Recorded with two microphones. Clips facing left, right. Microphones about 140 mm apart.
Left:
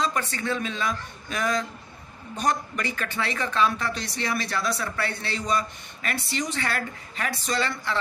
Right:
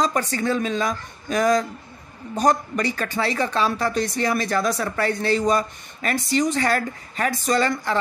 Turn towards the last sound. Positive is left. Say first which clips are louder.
# right 6 dB
turn(degrees=-40)  # may be behind; listen again after turning